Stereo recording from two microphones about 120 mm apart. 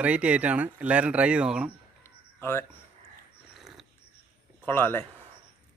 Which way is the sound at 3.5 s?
Centre (ahead or behind).